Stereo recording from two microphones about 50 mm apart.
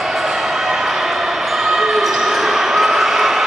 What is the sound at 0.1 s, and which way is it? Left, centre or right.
Basketball bounce, centre.